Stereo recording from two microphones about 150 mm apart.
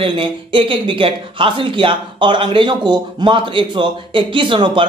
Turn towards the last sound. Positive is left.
turn(degrees=-35)  # may be behind; listen again after turning